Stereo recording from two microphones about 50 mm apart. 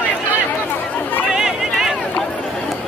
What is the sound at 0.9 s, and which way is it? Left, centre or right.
Chatter, left.